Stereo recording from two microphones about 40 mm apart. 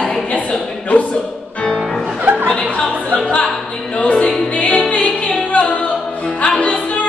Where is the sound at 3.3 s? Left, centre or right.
Left.